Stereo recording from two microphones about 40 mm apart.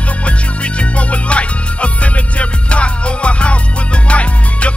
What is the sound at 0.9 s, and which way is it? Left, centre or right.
Music, left.